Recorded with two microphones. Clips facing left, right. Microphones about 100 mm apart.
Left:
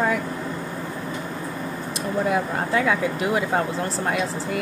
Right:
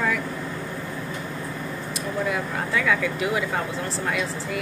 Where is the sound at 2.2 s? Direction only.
35° left (ahead or behind).